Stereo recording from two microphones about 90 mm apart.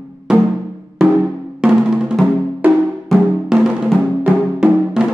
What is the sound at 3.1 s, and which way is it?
Music, centre (ahead or behind).